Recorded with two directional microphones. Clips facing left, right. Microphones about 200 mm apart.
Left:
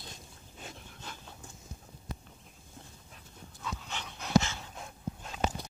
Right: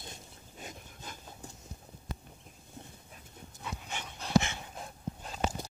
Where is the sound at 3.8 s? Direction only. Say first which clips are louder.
Even; 10° right (ahead or behind).